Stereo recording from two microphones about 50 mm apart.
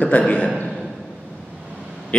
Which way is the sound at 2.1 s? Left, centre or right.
Left.